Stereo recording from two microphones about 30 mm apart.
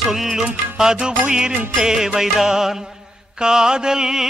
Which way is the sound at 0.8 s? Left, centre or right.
Right.